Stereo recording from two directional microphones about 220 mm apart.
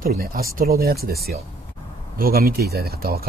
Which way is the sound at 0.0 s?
40° right (ahead or behind).